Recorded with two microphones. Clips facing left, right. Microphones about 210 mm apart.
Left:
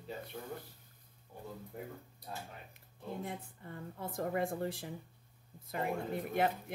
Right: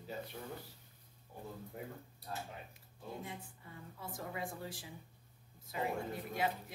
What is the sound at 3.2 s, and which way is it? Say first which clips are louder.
A woman's voice: left 5 dB; 55° left (ahead or behind).